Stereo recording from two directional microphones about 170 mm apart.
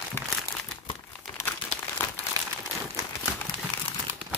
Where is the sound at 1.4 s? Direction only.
15° left (ahead or behind).